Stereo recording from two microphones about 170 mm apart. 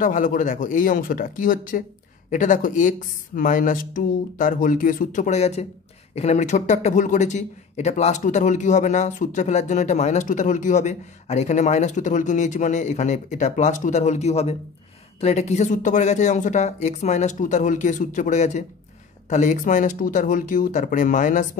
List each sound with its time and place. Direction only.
0.0 s speech: 50° left (ahead or behind)